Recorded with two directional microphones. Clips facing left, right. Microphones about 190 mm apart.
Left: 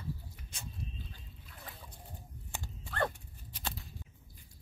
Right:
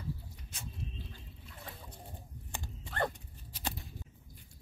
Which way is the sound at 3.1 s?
15° right (ahead or behind).